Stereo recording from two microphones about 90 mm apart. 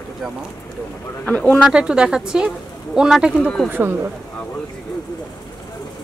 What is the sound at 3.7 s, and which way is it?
Speech, 25° right (ahead or behind).